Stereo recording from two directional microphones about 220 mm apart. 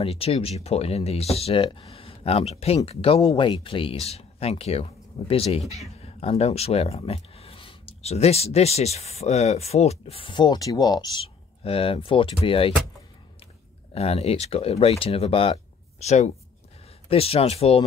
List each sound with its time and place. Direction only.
0.0 s speech: 25° left (ahead or behind)
13.9 s speech: 25° left (ahead or behind)